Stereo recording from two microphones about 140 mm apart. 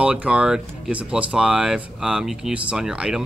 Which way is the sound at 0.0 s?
10° right (ahead or behind).